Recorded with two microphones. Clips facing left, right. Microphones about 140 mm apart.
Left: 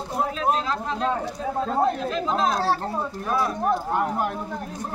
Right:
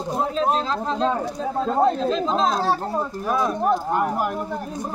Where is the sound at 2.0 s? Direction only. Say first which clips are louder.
Right 3 dB; 25° right (ahead or behind).